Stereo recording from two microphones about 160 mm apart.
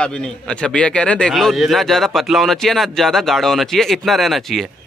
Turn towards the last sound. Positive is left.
turn(degrees=0)  # may be behind; listen again after turning